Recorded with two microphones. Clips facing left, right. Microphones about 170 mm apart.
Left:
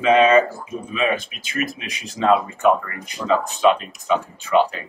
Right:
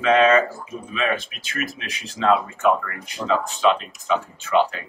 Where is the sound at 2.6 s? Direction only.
15° left (ahead or behind).